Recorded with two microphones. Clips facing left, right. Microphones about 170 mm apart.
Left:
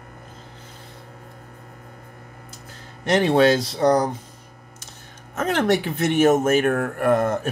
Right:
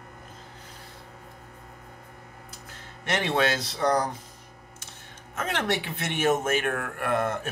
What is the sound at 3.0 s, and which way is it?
Speech, 35° left (ahead or behind).